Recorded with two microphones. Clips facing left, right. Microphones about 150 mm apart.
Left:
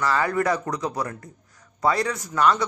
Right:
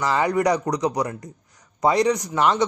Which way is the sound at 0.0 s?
20° right (ahead or behind).